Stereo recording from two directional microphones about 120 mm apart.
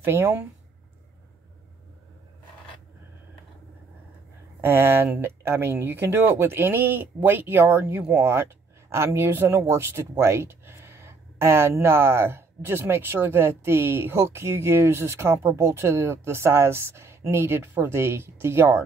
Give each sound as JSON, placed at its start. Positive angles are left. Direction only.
{"t": 0.0, "sound": "speech", "side_deg": -20}
{"t": 4.6, "sound": "speech", "side_deg": -20}